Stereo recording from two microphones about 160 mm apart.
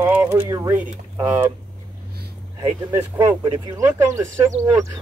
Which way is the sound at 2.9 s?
15° right (ahead or behind).